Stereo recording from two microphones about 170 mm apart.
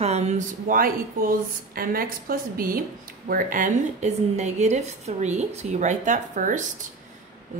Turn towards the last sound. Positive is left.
turn(degrees=-50)  # may be behind; listen again after turning